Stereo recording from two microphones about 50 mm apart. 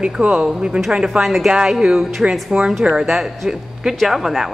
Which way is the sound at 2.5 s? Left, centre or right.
Centre.